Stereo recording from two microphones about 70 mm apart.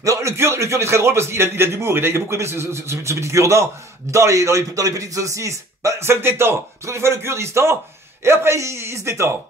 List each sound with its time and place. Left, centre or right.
0.0 s a man's voice: right